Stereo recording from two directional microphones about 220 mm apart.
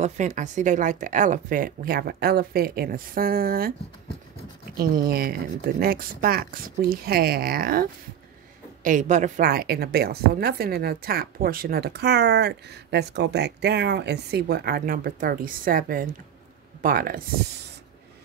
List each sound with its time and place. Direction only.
0.0 s speech: 35° right (ahead or behind)
5.0 s a woman's voice: 45° right (ahead or behind)